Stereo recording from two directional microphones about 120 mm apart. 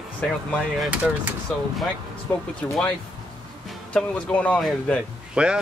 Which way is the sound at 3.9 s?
10° left (ahead or behind).